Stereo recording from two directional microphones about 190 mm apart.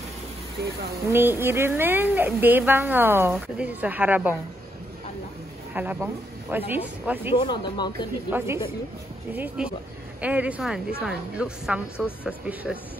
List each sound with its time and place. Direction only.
1.0 s a woman's voice: 10° right (ahead or behind)
5.7 s a woman's voice: 10° right (ahead or behind)
7.3 s speech: 25° left (ahead or behind)
8.3 s a woman's voice: 10° right (ahead or behind)